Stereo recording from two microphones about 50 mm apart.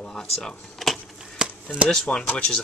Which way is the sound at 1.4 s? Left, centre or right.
Centre.